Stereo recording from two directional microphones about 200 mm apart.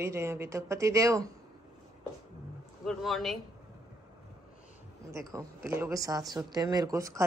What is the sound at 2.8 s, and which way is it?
Speech, centre (ahead or behind).